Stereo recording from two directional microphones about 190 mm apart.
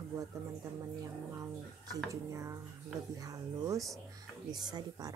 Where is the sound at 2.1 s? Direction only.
15° right (ahead or behind).